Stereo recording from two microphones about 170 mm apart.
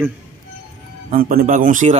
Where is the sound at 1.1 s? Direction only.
60° right (ahead or behind).